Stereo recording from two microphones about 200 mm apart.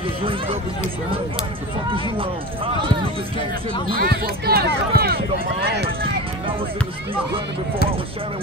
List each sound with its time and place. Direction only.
3.9 s speech: 50° right (ahead or behind)